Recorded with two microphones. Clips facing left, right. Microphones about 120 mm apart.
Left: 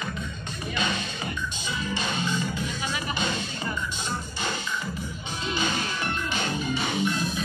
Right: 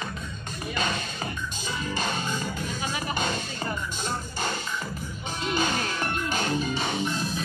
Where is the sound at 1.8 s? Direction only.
40° right (ahead or behind).